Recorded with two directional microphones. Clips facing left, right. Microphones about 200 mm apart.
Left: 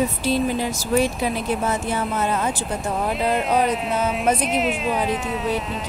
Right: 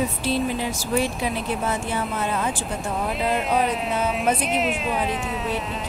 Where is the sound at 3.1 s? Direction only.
Centre (ahead or behind).